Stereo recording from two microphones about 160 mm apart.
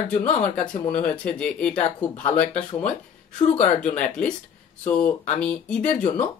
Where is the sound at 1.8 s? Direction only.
50° left (ahead or behind).